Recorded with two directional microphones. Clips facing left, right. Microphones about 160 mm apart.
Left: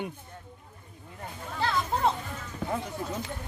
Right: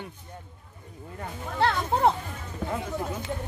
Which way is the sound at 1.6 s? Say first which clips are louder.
Right 5 dB; 70° right (ahead or behind).